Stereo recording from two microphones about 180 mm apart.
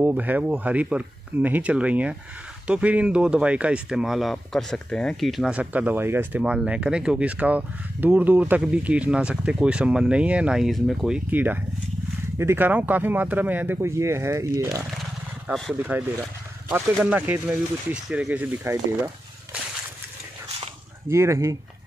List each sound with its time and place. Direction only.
0.0 s speech: 10° right (ahead or behind)
15.4 s speech: centre (ahead or behind)
15.9 s speech: 10° right (ahead or behind)
21.1 s speech: 15° right (ahead or behind)